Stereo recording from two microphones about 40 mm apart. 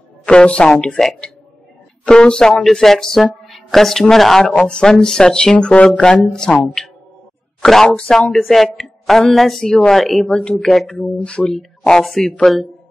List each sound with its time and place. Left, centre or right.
0.2 s speech: left
0.7 s speech: centre
2.0 s speech: left
2.7 s speech: centre
4.6 s speech: centre
6.6 s speech: centre